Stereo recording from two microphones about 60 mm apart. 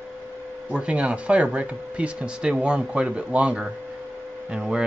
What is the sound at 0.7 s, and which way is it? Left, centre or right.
Speech, centre.